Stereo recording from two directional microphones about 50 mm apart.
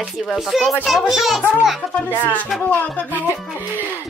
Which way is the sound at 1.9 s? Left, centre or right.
Left.